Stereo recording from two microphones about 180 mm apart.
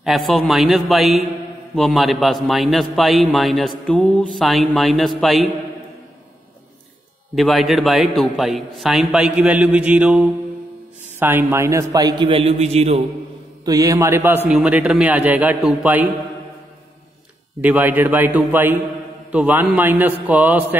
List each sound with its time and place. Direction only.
0.0 s a man's voice: centre (ahead or behind)
7.3 s a man's voice: centre (ahead or behind); by 13.0 s 35° right (ahead or behind)
13.7 s a man's voice: 20° right (ahead or behind)
17.6 s a man's voice: 10° right (ahead or behind)